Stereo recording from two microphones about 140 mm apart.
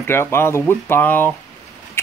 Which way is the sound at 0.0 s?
15° left (ahead or behind).